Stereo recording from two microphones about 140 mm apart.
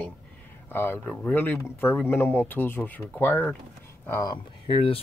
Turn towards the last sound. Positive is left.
turn(degrees=40)  # may be behind; listen again after turning